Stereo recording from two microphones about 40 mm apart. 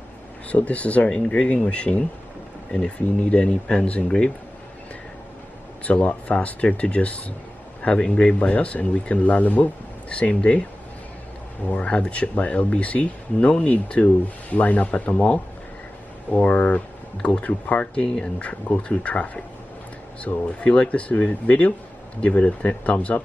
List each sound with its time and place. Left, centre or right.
0.5 s speech: left
1.1 s a man's voice: left
3.3 s speech: left
5.9 s a man's voice: left
8.4 s speech: left
11.6 s speech: left